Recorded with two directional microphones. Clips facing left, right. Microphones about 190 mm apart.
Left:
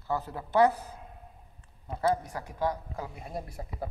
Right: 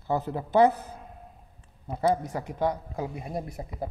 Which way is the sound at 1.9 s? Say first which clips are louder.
Right 3 dB; 20° right (ahead or behind).